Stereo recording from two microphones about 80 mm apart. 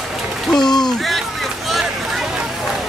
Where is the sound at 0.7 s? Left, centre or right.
Left.